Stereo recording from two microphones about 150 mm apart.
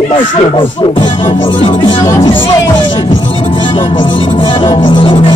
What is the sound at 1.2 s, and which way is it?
Music, 45° left (ahead or behind).